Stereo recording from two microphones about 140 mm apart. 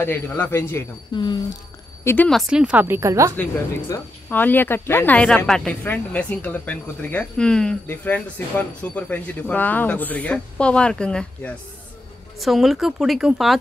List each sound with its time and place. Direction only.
0.0 s speech: 15° left (ahead or behind)
1.1 s speech: 30° left (ahead or behind)
2.0 s speech: 10° left (ahead or behind)
2.3 s speech: 5° right (ahead or behind)
3.3 s speech: 15° left (ahead or behind); by 13.6 s centre (ahead or behind)